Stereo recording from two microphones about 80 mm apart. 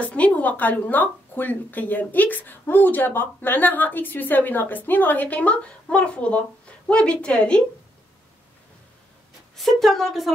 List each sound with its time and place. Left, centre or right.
0.0 s a woman's voice: centre
9.6 s a woman's voice: centre